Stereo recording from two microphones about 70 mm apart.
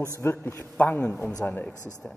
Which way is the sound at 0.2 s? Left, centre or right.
Left.